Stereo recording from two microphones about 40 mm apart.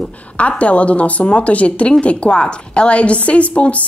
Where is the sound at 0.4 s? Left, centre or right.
Left.